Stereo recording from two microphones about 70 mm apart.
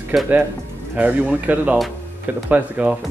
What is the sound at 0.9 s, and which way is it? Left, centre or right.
Speech, right.